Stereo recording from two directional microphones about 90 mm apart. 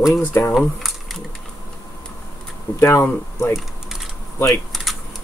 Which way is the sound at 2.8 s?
30° left (ahead or behind).